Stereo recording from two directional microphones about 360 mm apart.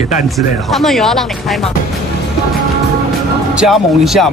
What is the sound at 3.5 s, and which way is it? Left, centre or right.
Speech, centre.